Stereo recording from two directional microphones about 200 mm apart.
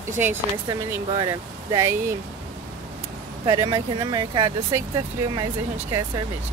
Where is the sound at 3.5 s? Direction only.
20° right (ahead or behind).